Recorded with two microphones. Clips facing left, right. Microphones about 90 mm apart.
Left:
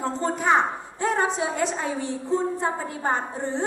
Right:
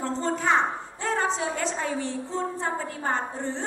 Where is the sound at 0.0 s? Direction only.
15° left (ahead or behind).